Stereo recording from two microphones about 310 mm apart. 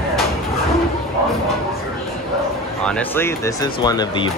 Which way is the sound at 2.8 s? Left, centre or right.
Centre.